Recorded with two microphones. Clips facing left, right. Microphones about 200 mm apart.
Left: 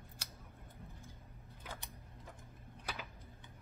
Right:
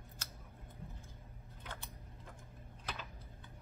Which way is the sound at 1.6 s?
5° left (ahead or behind).